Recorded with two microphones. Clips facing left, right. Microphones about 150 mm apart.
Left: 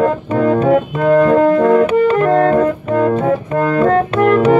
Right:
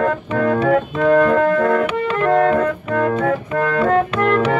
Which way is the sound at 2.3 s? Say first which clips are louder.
Left 3 dB; 35° left (ahead or behind).